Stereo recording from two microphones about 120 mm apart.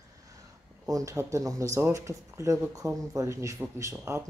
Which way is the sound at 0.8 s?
30° right (ahead or behind).